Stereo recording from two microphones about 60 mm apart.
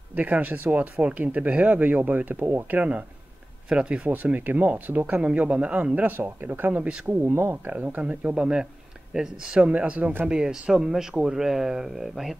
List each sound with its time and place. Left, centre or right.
0.1 s speech: right
2.4 s speech: right
2.8 s speech: right
4.0 s speech: right
7.2 s speech: right
7.7 s speech: right
9.7 s speech: right
10.3 s speech: centre